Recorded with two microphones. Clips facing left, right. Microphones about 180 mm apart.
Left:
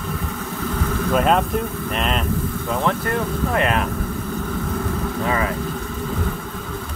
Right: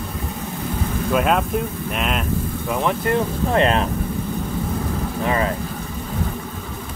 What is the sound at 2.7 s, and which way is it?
Speech, 15° right (ahead or behind).